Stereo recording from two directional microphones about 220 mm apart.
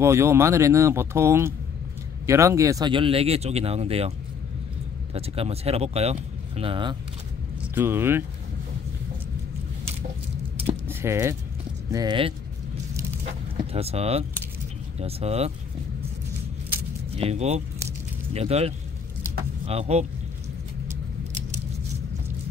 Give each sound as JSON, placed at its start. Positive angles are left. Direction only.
{"t": 0.0, "sound": "speech", "side_deg": -10}
{"t": 5.1, "sound": "speech", "side_deg": -25}
{"t": 7.7, "sound": "speech", "side_deg": -10}
{"t": 10.9, "sound": "speech", "side_deg": -10}
{"t": 13.7, "sound": "speech", "side_deg": -25}
{"t": 17.2, "sound": "speech", "side_deg": -30}